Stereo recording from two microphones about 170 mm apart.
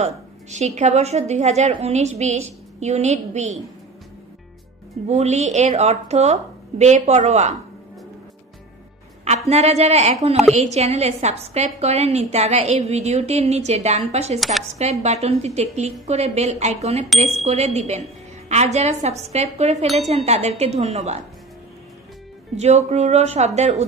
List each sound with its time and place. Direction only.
0.0 s a woman's voice: 40° right (ahead or behind)
5.0 s a woman's voice: 40° right (ahead or behind)
9.5 s a woman's voice: 40° right (ahead or behind)
22.6 s a woman's voice: 40° right (ahead or behind)